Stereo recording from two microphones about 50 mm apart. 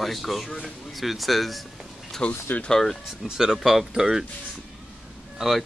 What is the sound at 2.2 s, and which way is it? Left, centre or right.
Speech, left.